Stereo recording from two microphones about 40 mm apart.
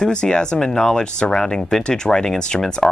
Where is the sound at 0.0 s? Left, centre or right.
Left.